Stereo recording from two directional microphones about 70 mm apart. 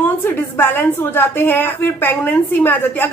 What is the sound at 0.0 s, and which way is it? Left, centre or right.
A woman's voice, left.